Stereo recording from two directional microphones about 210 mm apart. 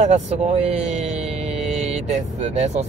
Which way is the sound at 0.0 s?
30° right (ahead or behind).